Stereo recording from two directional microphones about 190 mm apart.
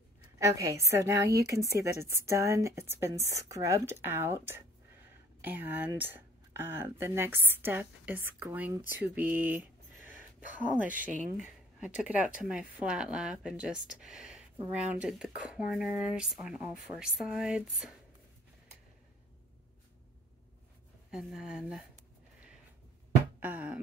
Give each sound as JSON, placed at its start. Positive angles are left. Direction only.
{"t": 0.4, "sound": "speech", "side_deg": -15}
{"t": 21.1, "sound": "speech", "side_deg": 0}
{"t": 23.4, "sound": "a sound", "side_deg": -10}